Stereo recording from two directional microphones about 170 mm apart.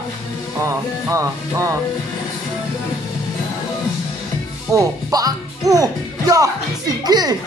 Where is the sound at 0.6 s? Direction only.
20° right (ahead or behind).